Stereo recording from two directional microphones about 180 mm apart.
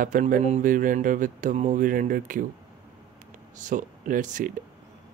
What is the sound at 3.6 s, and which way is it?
Speech, 45° right (ahead or behind).